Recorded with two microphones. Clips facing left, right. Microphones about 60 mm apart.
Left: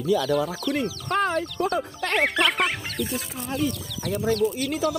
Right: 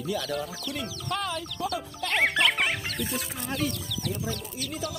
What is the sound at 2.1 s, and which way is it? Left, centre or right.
Speech, centre.